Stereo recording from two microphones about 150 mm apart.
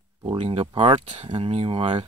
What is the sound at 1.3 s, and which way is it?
Speech, 35° right (ahead or behind).